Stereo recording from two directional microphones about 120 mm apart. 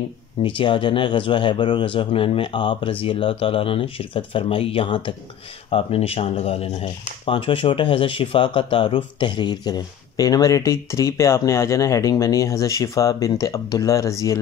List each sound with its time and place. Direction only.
0.4 s speech: 45° left (ahead or behind); by 14.4 s 25° left (ahead or behind)